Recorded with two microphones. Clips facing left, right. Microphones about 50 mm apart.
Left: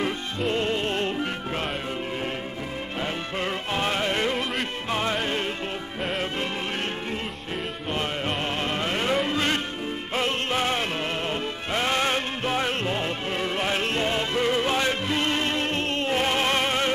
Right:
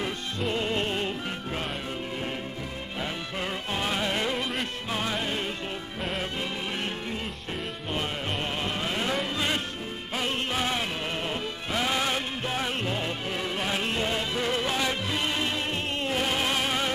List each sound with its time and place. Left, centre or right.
0.5 s music: centre
3.3 s music: left
8.8 s music: left
10.1 s music: left
16.1 s music: left